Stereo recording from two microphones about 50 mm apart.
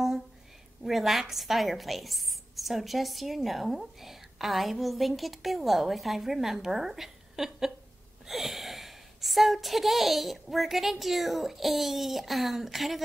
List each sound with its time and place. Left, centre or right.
0.8 s a woman's voice: centre